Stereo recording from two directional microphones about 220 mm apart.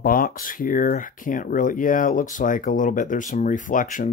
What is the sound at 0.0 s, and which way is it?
Speech, 40° left (ahead or behind).